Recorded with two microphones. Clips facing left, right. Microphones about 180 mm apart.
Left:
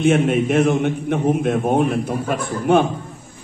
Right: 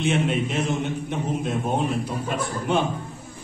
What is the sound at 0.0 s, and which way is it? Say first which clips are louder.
A man's voice: left 7 dB; 50° left (ahead or behind).